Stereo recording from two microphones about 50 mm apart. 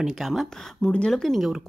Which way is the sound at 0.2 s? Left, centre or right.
Centre.